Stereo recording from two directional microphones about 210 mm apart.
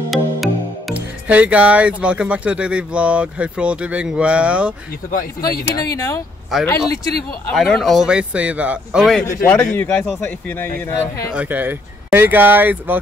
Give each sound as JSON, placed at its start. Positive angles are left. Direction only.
{"t": 0.1, "sound": "speech", "side_deg": 0}
{"t": 5.1, "sound": "speech", "side_deg": 45}
{"t": 5.9, "sound": "a man's voice", "side_deg": 15}
{"t": 9.4, "sound": "a man's voice", "side_deg": 10}
{"t": 11.3, "sound": "speech", "side_deg": -10}